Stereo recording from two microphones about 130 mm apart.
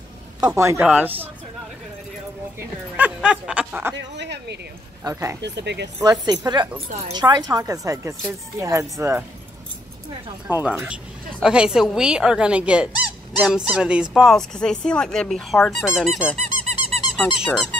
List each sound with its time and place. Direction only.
0.6 s a woman's voice: 20° right (ahead or behind)
3.0 s a sound: 10° right (ahead or behind)
5.0 s a woman's voice: 25° right (ahead or behind)
10.5 s speech: 10° right (ahead or behind)
16.3 s squeak: 60° right (ahead or behind)
17.5 s speech: 10° left (ahead or behind)